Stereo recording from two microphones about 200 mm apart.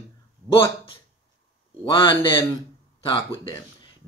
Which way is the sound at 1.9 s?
25° left (ahead or behind).